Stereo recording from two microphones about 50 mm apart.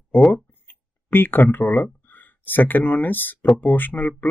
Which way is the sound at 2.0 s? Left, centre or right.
Left.